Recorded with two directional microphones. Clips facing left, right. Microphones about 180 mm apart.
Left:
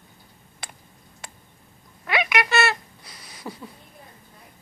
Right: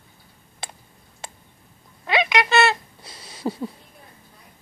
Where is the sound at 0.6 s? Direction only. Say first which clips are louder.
Right 5 dB; 25° right (ahead or behind).